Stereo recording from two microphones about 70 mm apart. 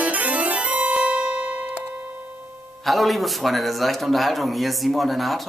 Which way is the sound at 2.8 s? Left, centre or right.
Centre.